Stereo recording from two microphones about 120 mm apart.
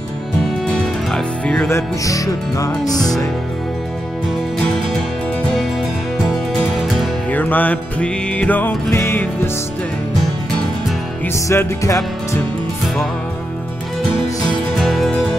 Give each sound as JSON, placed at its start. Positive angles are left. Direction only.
{"t": 0.4, "sound": "music", "side_deg": 5}
{"t": 1.7, "sound": "music", "side_deg": 25}
{"t": 6.2, "sound": "music", "side_deg": 0}
{"t": 7.2, "sound": "music", "side_deg": 15}
{"t": 11.3, "sound": "music", "side_deg": 25}
{"t": 12.8, "sound": "music", "side_deg": 5}
{"t": 14.8, "sound": "music", "side_deg": 0}